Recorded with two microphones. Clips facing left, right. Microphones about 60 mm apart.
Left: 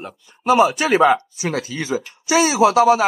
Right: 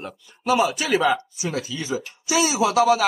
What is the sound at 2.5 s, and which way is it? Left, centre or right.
Speech, left.